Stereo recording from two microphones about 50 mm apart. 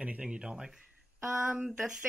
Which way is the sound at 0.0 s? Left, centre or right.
Right.